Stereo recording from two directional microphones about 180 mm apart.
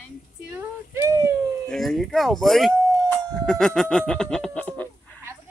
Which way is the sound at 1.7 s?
Centre (ahead or behind).